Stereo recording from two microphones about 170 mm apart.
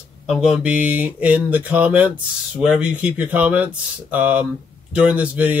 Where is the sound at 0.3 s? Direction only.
5° right (ahead or behind).